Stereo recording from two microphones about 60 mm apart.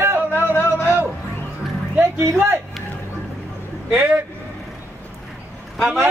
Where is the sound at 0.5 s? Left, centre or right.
Left.